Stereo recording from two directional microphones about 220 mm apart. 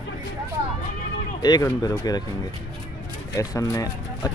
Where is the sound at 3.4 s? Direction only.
15° left (ahead or behind).